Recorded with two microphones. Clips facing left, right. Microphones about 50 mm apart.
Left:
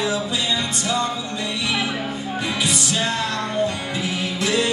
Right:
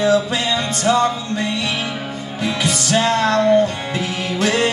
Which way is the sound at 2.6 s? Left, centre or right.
Right.